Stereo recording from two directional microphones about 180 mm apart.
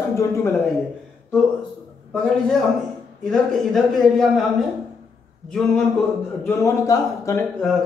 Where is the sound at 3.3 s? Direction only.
Centre (ahead or behind).